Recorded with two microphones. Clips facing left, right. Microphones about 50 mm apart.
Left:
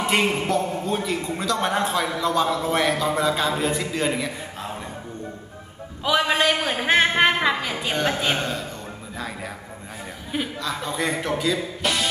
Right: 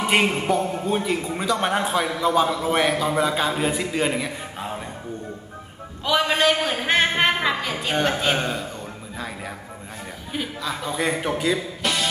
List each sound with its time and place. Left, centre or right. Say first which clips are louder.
0.0 s a man's voice: right 1 dB; centre
6.0 s a man's voice: even; centre
10.6 s a man's voice: right 3 dB; centre
11.8 s music: left 2 dB; centre